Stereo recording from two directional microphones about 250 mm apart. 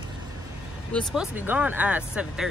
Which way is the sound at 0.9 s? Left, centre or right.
Centre.